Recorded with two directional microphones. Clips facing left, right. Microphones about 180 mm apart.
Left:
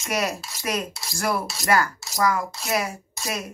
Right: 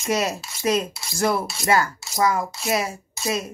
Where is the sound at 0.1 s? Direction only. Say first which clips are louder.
Right 3 dB; 25° right (ahead or behind).